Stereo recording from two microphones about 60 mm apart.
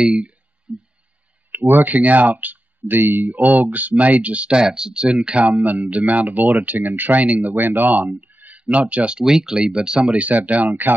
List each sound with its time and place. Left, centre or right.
0.0 s speech: centre
0.7 s a sound: centre
1.5 s speech: right; by 5.4 s centre
5.6 s speech: right